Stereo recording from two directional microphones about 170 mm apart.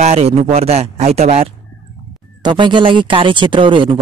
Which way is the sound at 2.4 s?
25° right (ahead or behind).